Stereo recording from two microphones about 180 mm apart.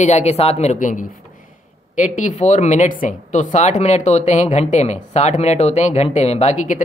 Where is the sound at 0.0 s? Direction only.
40° left (ahead or behind).